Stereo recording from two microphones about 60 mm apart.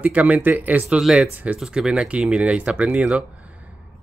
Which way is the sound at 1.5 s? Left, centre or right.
Centre.